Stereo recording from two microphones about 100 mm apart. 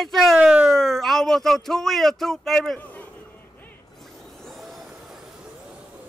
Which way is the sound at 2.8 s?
15° left (ahead or behind).